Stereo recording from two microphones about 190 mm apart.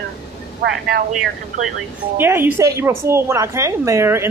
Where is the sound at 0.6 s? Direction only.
60° right (ahead or behind).